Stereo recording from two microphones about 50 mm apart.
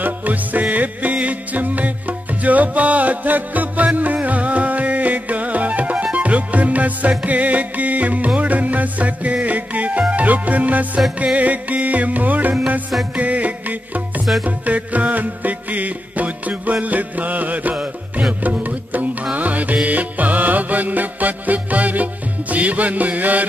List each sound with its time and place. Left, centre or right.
0.0 s music: right